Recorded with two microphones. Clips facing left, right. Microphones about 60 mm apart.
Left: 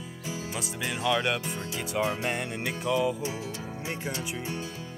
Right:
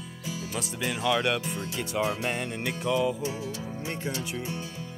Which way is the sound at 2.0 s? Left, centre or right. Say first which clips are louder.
Even; left.